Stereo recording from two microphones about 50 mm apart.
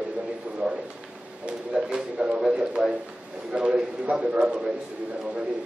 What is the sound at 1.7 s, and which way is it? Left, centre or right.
A man's voice, centre.